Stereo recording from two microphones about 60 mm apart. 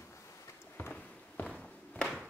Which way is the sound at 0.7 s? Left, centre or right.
Left.